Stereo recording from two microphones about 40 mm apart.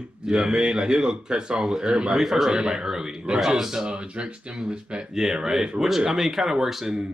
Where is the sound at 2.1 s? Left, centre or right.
Centre.